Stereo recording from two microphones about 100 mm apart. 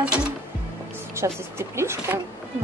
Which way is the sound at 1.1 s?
25° right (ahead or behind).